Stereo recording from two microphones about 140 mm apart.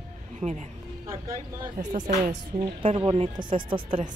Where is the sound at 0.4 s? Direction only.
55° right (ahead or behind).